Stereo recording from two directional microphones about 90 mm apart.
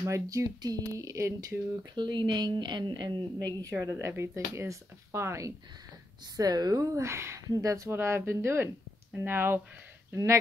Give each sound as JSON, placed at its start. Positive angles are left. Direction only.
{"t": 0.0, "sound": "speech", "side_deg": -35}
{"t": 2.0, "sound": "a woman's voice", "side_deg": -55}
{"t": 3.7, "sound": "speech", "side_deg": -35}
{"t": 6.3, "sound": "speech", "side_deg": -45}